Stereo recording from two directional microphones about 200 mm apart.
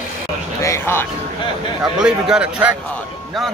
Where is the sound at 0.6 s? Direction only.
15° left (ahead or behind).